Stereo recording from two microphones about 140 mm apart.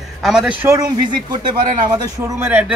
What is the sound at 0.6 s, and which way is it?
Speech, 30° right (ahead or behind).